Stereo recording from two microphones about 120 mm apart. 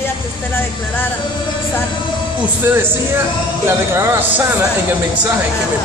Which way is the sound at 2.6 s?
20° right (ahead or behind).